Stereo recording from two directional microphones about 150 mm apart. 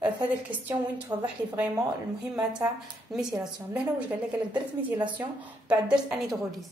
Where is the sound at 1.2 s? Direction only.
15° right (ahead or behind).